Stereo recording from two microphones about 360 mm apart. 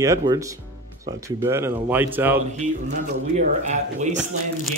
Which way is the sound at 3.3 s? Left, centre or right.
Centre.